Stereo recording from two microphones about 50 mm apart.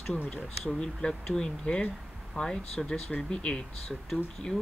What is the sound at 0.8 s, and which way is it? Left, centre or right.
Speech, centre.